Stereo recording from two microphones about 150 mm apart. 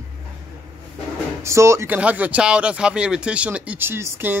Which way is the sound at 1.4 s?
20° right (ahead or behind).